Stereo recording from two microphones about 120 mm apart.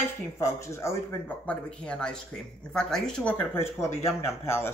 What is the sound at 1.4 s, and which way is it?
Speech, 5° left (ahead or behind).